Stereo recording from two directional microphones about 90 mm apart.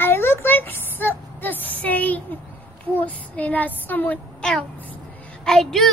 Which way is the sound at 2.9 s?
15° left (ahead or behind).